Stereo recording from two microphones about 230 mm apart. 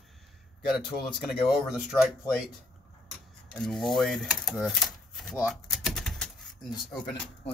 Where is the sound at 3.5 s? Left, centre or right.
Centre.